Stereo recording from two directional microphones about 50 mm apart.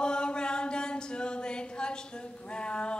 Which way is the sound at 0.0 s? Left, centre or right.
Centre.